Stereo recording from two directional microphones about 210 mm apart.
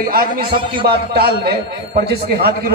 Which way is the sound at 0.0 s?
45° right (ahead or behind).